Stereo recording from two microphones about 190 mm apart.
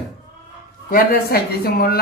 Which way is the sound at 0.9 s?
50° left (ahead or behind).